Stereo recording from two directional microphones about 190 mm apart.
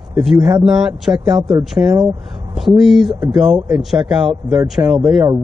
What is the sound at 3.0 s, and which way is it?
Speech, 20° right (ahead or behind).